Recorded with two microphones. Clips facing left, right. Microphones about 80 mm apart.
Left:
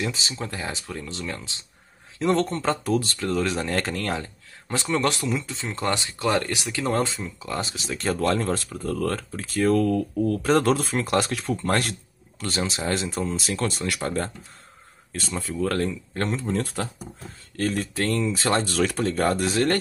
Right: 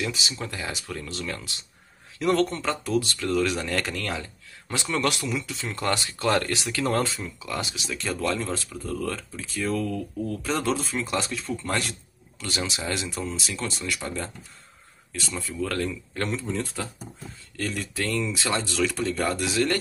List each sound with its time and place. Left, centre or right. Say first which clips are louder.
0.0 s speech: left 1 dB; left
7.3 s speech: left 2 dB; left
11.5 s speech: left 4 dB; left
17.6 s speech: left 5 dB; left